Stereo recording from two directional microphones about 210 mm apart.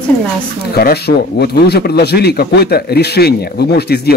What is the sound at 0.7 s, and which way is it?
Speech, 50° left (ahead or behind).